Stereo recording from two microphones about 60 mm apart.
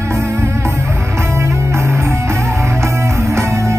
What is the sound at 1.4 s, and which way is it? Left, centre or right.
Music, right.